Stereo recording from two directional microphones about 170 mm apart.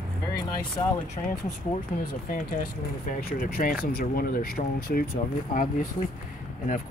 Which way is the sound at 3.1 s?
55° left (ahead or behind).